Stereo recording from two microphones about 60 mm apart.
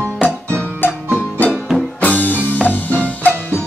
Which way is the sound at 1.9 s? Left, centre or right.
Left.